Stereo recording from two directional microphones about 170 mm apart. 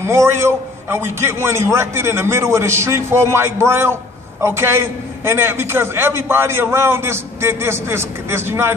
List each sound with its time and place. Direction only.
0.0 s a man's voice: 15° right (ahead or behind)